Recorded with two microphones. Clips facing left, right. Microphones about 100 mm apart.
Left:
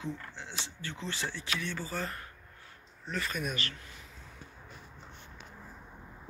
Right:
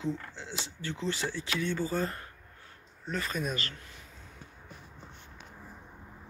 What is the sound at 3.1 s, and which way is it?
Speech, 35° right (ahead or behind).